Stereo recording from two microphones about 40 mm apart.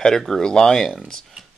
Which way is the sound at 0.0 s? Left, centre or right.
Centre.